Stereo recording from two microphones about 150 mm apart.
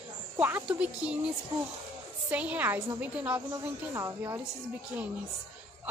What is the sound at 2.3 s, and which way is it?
A woman's voice, 10° right (ahead or behind).